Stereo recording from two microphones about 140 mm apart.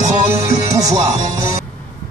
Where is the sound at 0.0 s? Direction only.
35° right (ahead or behind).